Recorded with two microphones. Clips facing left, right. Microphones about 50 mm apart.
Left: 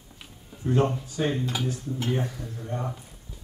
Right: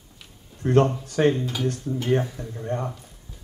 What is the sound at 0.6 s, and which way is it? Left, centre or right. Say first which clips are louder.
Speech: right 5 dB; right.